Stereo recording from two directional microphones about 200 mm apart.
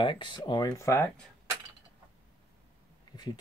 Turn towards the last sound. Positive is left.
turn(degrees=20)  # may be behind; listen again after turning